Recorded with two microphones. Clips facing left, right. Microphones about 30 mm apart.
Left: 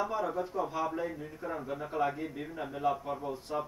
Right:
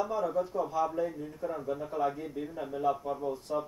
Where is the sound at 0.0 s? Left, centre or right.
Centre.